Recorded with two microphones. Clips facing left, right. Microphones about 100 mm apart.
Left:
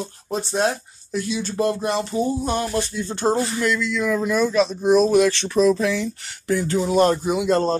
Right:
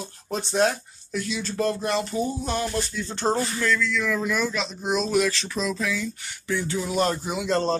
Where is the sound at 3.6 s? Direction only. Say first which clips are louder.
Left 3 dB; 20° left (ahead or behind).